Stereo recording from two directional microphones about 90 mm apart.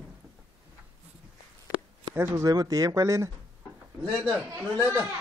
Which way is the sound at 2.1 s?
30° right (ahead or behind).